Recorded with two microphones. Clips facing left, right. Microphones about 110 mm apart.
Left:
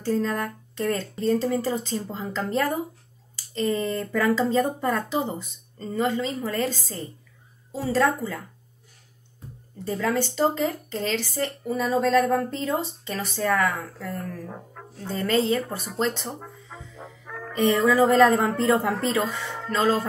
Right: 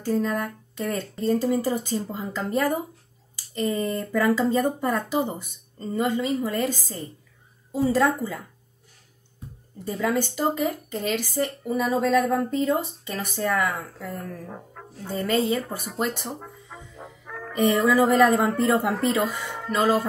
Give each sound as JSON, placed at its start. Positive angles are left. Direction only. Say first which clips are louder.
{"t": 0.0, "sound": "a woman's voice", "louder": "even", "side_deg": -10}
{"t": 9.8, "sound": "speech", "louder": "even", "side_deg": -10}
{"t": 14.5, "sound": "music", "louder": "even", "side_deg": 0}
{"t": 15.0, "sound": "speech", "louder": "left 1 dB", "side_deg": -10}
{"t": 16.3, "sound": "music", "louder": "even", "side_deg": 0}
{"t": 17.5, "sound": "speech", "louder": "even", "side_deg": -10}